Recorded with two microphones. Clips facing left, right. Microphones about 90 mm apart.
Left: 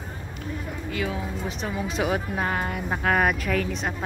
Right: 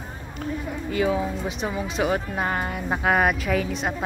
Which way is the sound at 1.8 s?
Centre (ahead or behind).